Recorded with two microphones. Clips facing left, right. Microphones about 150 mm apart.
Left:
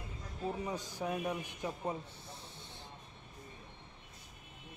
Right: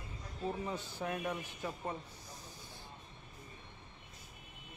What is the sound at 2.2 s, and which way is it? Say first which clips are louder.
Snake: left 1 dB; 30° left (ahead or behind).